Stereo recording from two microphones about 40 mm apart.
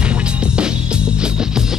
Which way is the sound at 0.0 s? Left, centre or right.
Right.